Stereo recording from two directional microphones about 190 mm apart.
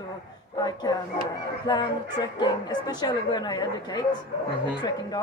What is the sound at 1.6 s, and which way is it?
Speech, 20° left (ahead or behind).